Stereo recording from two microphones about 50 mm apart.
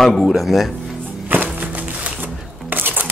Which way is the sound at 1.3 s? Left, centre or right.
Right.